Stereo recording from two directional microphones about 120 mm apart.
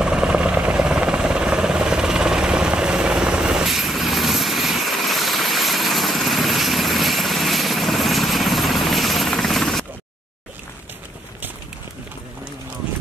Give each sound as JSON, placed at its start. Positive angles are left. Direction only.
{"t": 0.0, "sound": "helicopter", "side_deg": -10}